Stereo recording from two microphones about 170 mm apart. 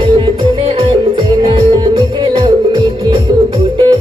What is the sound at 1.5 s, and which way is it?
Music, 25° right (ahead or behind).